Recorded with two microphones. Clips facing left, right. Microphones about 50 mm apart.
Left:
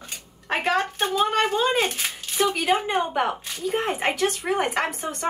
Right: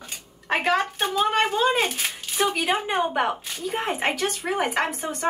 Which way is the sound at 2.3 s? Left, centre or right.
Right.